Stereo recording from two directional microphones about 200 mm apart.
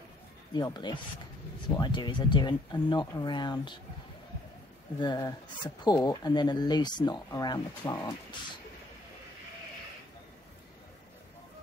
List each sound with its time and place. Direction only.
0.6 s speech: 20° left (ahead or behind)
5.0 s speech: 20° left (ahead or behind)